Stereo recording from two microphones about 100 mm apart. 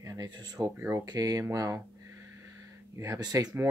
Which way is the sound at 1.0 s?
40° right (ahead or behind).